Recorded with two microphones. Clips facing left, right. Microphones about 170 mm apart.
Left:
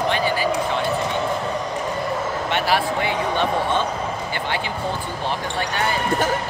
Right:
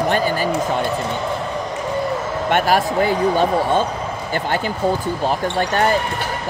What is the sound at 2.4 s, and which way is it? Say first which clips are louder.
Speech: right 5 dB; 50° right (ahead or behind).